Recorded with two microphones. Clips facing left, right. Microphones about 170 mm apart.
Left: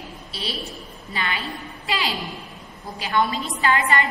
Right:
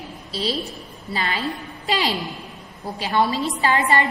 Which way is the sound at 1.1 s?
35° right (ahead or behind).